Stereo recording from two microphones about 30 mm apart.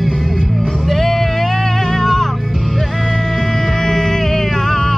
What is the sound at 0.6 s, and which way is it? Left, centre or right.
Music, centre.